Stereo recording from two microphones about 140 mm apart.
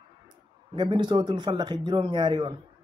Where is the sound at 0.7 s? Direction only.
35° right (ahead or behind).